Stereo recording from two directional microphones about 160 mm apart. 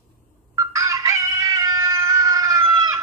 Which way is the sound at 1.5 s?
20° right (ahead or behind).